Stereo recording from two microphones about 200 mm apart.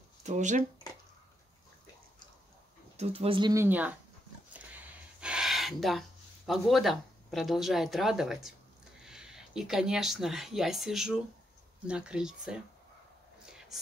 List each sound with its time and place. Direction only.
0.2 s speech: 35° right (ahead or behind)
3.0 s speech: 30° right (ahead or behind)
3.6 s speech: 10° right (ahead or behind)
4.7 s a sound: 5° right (ahead or behind)
9.0 s speech: 5° right (ahead or behind)
13.5 s a sound: 5° right (ahead or behind)